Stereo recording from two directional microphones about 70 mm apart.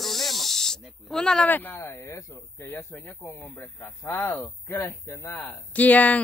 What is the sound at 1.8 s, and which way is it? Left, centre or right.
Speech, left.